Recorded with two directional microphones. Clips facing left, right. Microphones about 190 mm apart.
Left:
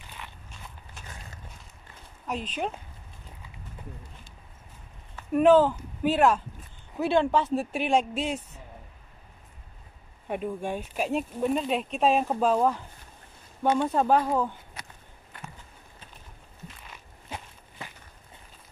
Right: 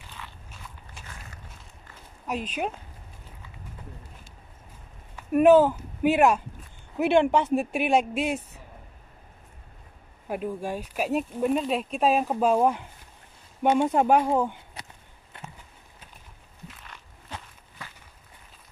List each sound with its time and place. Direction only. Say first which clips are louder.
0.2 s walk: even; 20° left (ahead or behind)
2.2 s speech: right 2 dB; 10° right (ahead or behind)
5.1 s speech: right 2 dB; 10° right (ahead or behind)
10.2 s speech: right 1 dB; centre (ahead or behind); by 14.9 s 20° right (ahead or behind)
15.3 s walk: right 1 dB; 25° right (ahead or behind)